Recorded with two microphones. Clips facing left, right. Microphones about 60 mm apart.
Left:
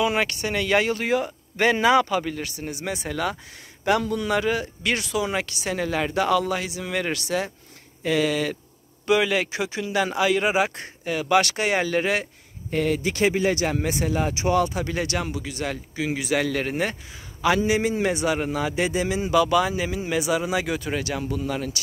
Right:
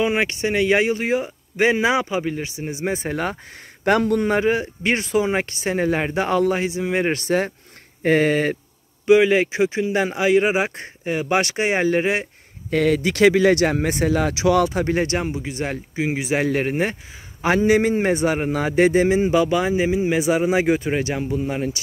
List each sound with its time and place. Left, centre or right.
0.0 s speech: right
3.8 s a man's voice: right
9.0 s speech: right
12.6 s speech: right
17.6 s a man's voice: right